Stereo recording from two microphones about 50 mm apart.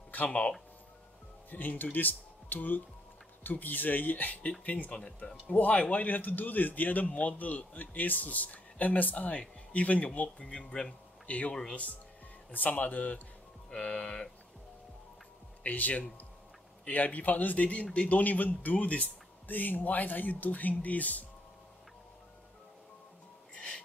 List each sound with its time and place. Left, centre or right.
0.3 s speech: left
1.5 s speech: left
4.9 s speech: centre
5.5 s speech: left
11.2 s speech: left
12.5 s speech: left
13.7 s speech: centre
15.6 s speech: left
23.5 s music: left